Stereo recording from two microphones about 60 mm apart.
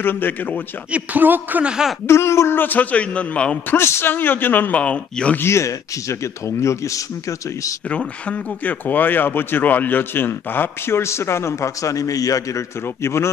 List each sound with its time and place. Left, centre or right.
0.0 s speech: left
0.9 s speech: right
1.6 s speech: centre
2.0 s speech: left
2.6 s a man's voice: left
3.7 s speech: left; by 5.4 s centre
5.4 s speech: left
8.3 s speech: left
11.0 s speech: left
13.0 s speech: left